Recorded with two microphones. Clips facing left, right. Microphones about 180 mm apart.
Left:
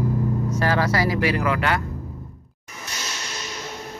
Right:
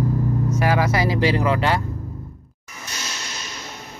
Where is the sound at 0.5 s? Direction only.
10° right (ahead or behind).